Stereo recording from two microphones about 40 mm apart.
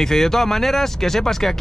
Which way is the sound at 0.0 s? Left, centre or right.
Centre.